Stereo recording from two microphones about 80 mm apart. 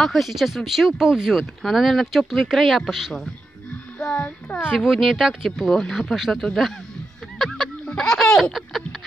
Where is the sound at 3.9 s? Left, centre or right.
Centre.